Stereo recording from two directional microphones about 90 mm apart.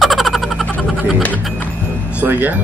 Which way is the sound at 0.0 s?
Centre (ahead or behind).